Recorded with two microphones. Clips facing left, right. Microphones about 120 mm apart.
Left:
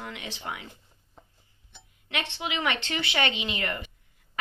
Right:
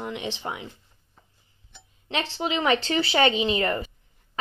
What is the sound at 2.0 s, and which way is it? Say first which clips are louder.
Speech: right 5 dB; 35° right (ahead or behind).